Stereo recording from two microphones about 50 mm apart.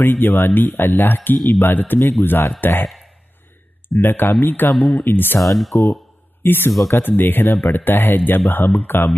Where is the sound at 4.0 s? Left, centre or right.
Left.